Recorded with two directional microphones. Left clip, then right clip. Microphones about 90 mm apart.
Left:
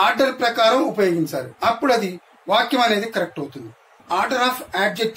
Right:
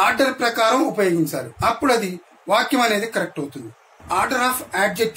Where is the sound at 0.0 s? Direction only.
5° left (ahead or behind).